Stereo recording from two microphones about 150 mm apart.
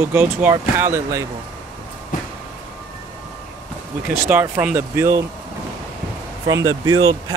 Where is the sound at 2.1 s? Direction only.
60° left (ahead or behind).